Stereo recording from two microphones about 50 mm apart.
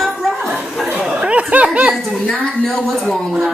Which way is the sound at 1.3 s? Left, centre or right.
Right.